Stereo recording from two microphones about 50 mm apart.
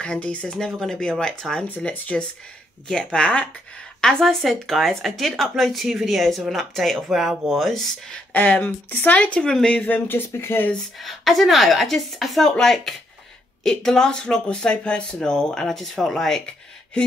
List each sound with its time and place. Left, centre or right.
0.0 s speech: left
0.6 s speech: centre
8.3 s speech: left
9.8 s speech: left
11.0 s speech: centre